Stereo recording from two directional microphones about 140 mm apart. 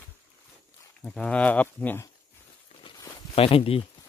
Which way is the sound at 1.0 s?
5° left (ahead or behind).